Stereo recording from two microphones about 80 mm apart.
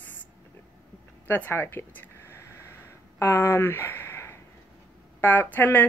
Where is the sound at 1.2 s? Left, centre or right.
Left.